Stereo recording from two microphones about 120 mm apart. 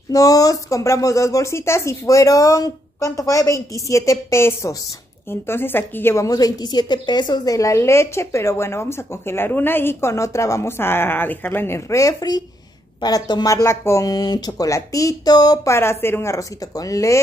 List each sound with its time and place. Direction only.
0.1 s a woman's voice: 30° left (ahead or behind)